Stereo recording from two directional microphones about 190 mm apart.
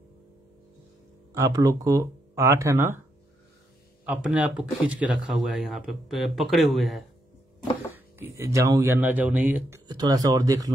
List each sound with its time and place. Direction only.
1.3 s speech: 15° right (ahead or behind)
4.0 s speech: 5° right (ahead or behind)
7.9 s speech: 15° right (ahead or behind)
9.8 s speech: 20° right (ahead or behind)